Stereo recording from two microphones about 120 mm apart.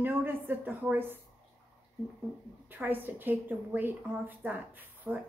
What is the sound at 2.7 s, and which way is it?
Speech, 15° right (ahead or behind).